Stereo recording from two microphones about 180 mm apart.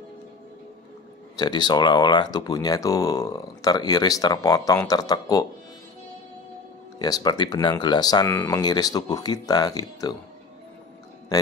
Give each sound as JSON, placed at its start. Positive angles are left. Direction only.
{"t": 1.3, "sound": "speech", "side_deg": 25}
{"t": 7.0, "sound": "speech", "side_deg": 20}